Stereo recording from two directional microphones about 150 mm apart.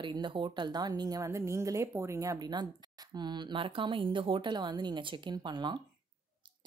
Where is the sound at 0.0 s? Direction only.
30° right (ahead or behind).